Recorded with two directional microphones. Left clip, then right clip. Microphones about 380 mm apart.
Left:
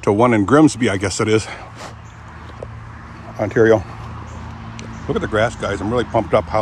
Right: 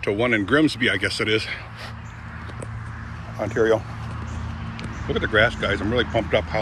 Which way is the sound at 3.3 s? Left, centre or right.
Left.